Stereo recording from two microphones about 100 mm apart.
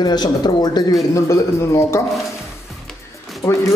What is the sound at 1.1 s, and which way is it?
Speech, 30° left (ahead or behind).